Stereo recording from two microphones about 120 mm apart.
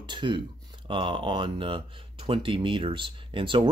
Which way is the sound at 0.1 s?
40° right (ahead or behind).